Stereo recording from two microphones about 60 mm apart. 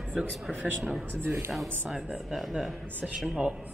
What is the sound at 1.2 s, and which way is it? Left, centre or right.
Speech, right.